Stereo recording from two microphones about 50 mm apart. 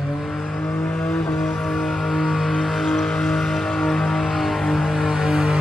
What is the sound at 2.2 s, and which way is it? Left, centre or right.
Vehicle, centre.